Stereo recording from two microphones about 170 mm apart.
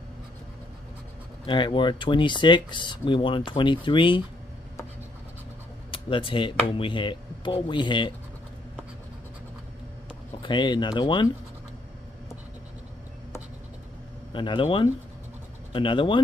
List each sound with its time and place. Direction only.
1.4 s speech: 30° left (ahead or behind)
5.9 s speech: 30° left (ahead or behind)
10.4 s speech: 25° left (ahead or behind)
14.3 s speech: 30° left (ahead or behind)